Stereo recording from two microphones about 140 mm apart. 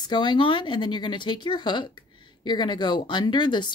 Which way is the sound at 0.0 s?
30° left (ahead or behind).